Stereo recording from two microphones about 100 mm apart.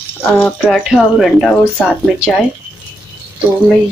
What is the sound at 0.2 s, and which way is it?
Speech, 15° left (ahead or behind).